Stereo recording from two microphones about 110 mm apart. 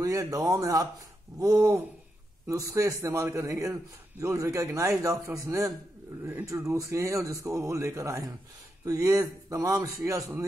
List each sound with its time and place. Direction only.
0.0 s speech: 30° right (ahead or behind)
2.4 s a man's voice: 30° right (ahead or behind)